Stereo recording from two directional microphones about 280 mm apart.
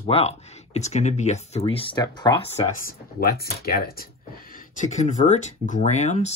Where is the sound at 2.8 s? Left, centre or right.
Left.